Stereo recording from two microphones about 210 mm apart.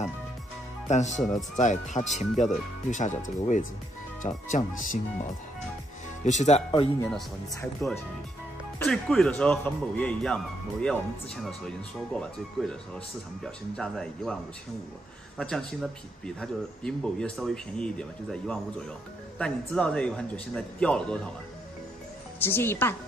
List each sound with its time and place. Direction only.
0.8 s speech: 35° left (ahead or behind)
6.2 s speech: 35° left (ahead or behind)
7.8 s a woman's voice: 10° left (ahead or behind)
22.4 s a woman's voice: 10° left (ahead or behind)